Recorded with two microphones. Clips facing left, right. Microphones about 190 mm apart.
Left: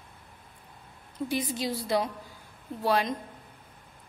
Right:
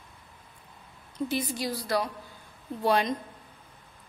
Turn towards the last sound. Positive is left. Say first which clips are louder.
# right 1 dB
turn(degrees=5)  # may be behind; listen again after turning